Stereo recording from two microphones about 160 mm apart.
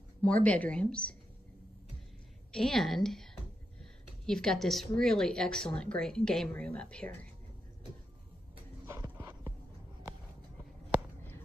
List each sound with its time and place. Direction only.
0.2 s speech: 10° left (ahead or behind)
2.5 s speech: centre (ahead or behind)
4.3 s speech: 5° left (ahead or behind)
8.8 s dog: 20° right (ahead or behind)